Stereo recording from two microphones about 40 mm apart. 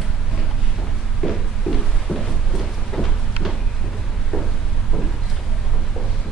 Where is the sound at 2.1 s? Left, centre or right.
Left.